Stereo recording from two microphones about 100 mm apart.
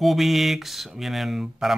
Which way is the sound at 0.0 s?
Centre (ahead or behind).